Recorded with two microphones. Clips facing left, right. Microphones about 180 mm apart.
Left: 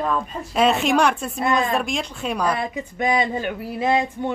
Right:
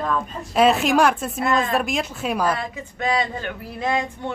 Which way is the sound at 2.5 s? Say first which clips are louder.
Left 1 dB; 15° left (ahead or behind).